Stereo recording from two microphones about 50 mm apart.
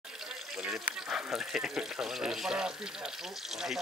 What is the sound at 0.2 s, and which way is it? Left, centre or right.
Water, centre.